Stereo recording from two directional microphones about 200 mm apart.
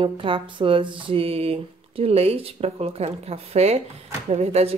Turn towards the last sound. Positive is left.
turn(degrees=-30)  # may be behind; listen again after turning